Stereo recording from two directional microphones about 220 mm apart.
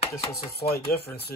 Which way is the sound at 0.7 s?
45° left (ahead or behind).